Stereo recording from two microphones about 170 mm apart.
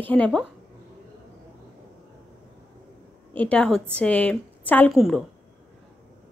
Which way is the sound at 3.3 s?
10° left (ahead or behind).